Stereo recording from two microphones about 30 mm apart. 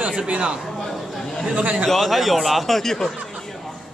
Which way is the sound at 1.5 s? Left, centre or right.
Right.